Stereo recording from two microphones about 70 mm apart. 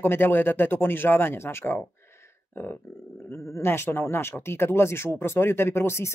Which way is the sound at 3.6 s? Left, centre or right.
Left.